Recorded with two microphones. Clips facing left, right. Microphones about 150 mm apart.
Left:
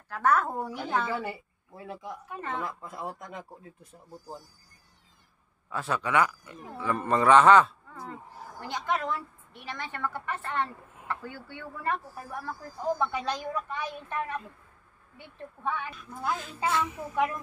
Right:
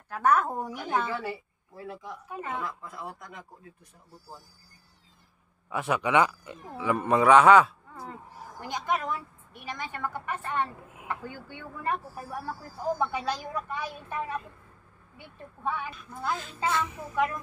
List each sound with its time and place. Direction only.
0.1 s a woman's voice: 15° right (ahead or behind)
2.2 s a woman's voice: 10° right (ahead or behind)
2.6 s speech: 25° left (ahead or behind)
5.7 s a woman's voice: 15° right (ahead or behind)
16.2 s speech: 10° left (ahead or behind)